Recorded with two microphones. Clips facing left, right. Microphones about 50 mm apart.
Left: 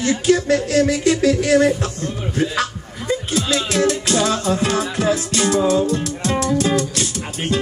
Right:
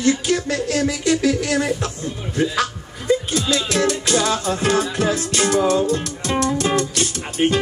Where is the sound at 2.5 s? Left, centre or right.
Left.